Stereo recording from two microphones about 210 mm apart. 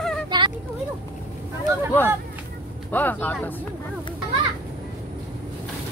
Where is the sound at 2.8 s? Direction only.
10° left (ahead or behind).